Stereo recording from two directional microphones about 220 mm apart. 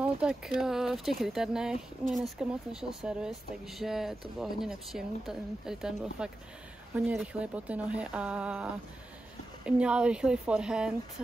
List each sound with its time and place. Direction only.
0.0 s speech: 5° right (ahead or behind)
9.7 s speech: 5° right (ahead or behind)